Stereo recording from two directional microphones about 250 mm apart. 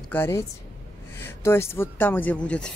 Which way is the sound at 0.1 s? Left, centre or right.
Centre.